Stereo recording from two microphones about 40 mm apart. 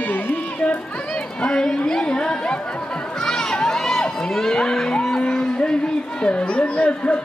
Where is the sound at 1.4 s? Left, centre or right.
Centre.